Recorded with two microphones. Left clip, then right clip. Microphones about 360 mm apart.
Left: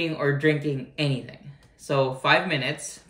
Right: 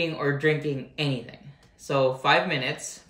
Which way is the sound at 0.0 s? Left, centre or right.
Centre.